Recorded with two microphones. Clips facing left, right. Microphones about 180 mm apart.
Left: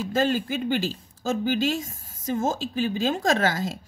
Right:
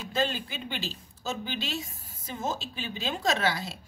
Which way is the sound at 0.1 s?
45° left (ahead or behind).